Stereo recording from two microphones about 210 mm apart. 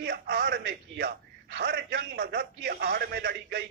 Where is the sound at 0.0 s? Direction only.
50° right (ahead or behind).